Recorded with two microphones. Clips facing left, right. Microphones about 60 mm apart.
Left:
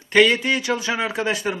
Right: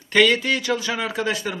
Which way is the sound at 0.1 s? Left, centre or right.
Centre.